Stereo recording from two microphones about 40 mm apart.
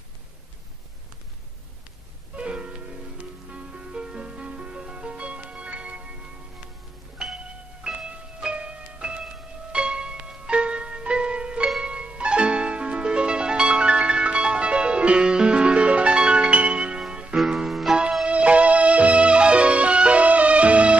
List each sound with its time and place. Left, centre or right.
2.3 s music: right
7.8 s music: right
17.6 s music: centre
18.2 s music: right